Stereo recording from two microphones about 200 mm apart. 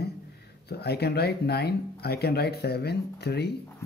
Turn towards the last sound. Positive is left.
turn(degrees=55)  # may be behind; listen again after turning